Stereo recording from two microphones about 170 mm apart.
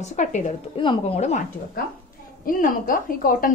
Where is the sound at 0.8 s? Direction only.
30° left (ahead or behind).